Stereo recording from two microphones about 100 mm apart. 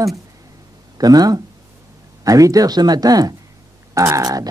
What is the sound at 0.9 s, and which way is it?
Speech, 40° right (ahead or behind).